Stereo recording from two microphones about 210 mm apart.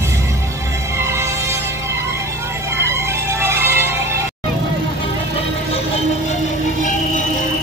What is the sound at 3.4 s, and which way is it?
Music, 10° right (ahead or behind).